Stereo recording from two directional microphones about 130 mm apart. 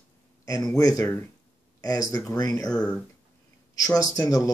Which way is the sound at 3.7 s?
30° left (ahead or behind).